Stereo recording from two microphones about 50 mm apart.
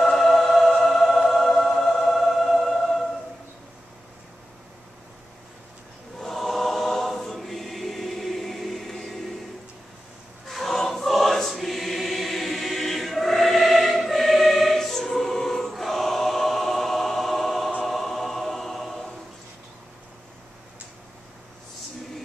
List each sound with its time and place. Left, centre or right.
0.0 s music: centre
6.1 s choir: centre
10.5 s choir: centre
17.8 s music: centre